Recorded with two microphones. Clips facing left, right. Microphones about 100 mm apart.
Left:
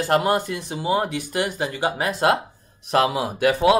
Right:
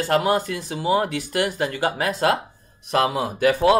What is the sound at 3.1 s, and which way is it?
Speech, 10° left (ahead or behind).